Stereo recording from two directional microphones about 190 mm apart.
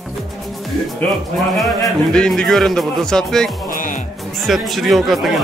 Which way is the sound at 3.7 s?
45° left (ahead or behind).